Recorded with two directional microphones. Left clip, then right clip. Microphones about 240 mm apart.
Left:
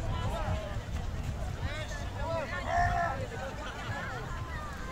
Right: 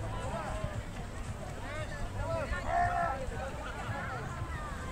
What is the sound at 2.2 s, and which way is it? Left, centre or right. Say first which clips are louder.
Vehicle: left 1 dB; left.